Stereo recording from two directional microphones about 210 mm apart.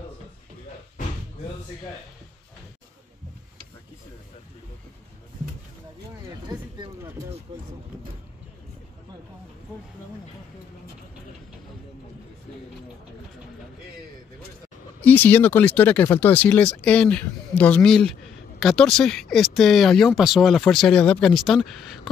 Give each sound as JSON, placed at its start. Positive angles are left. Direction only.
{"t": 6.4, "sound": "speech", "side_deg": -20}
{"t": 15.0, "sound": "speech", "side_deg": 10}